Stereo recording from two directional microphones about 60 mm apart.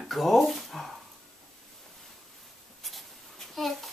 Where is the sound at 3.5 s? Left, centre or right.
Centre.